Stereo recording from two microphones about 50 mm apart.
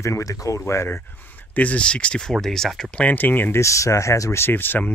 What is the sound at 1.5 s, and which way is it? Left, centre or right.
Speech, left.